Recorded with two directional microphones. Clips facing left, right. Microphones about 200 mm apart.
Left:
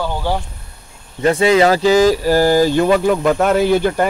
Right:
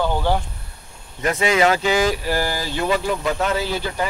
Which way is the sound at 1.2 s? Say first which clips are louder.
Left 6 dB; 30° left (ahead or behind).